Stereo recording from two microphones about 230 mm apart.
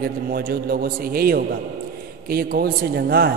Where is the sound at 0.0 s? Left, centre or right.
Right.